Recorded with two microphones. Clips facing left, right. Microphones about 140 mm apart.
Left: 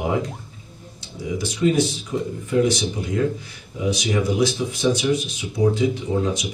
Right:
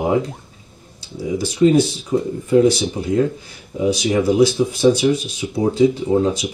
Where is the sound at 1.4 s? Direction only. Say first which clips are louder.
Right 6 dB; 35° right (ahead or behind).